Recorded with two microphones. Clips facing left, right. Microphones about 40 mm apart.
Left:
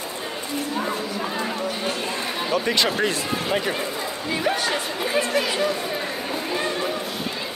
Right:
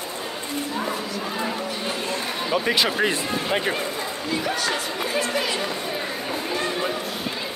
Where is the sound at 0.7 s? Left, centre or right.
Centre.